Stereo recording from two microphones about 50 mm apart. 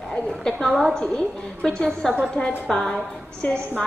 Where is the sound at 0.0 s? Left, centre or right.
Centre.